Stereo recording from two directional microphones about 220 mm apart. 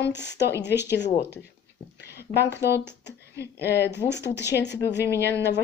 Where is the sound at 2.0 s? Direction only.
50° left (ahead or behind).